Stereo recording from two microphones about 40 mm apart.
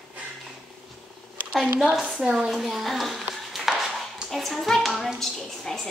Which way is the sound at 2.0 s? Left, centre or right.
Right.